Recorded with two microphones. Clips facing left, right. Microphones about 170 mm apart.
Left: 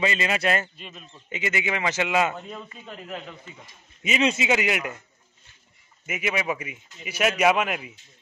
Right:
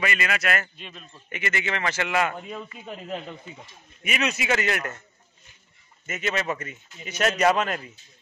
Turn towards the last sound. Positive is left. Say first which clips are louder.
# even
turn(degrees=10)  # may be behind; listen again after turning